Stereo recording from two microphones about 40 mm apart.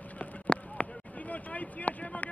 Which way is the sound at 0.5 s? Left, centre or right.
Left.